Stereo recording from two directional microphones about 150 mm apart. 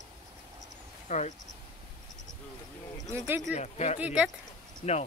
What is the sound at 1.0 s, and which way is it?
Speech, 50° left (ahead or behind).